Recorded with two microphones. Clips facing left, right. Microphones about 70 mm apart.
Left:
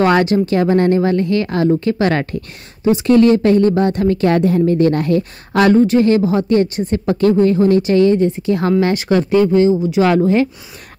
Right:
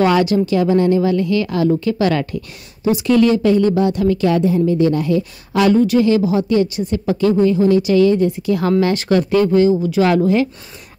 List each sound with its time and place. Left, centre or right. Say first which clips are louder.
0.0 s speech: left 1 dB; left
8.8 s speech: left 1 dB; centre
10.0 s speech: left 1 dB; left